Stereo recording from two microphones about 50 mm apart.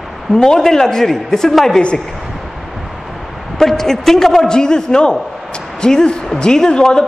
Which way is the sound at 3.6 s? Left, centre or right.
Centre.